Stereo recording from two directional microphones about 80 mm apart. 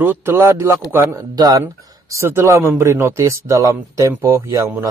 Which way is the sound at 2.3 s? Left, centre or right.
Right.